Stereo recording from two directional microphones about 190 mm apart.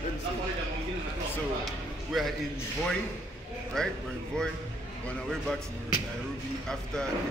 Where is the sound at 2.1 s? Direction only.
Centre (ahead or behind).